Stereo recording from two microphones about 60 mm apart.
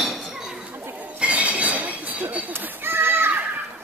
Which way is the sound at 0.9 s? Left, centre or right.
Right.